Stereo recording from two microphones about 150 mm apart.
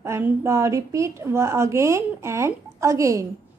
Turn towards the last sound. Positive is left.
turn(degrees=-20)  # may be behind; listen again after turning